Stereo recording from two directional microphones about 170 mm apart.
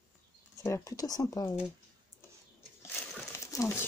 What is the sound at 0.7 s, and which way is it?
Speech, 15° left (ahead or behind).